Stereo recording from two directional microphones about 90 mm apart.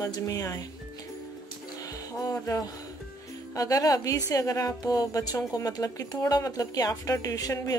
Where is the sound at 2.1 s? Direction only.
40° left (ahead or behind).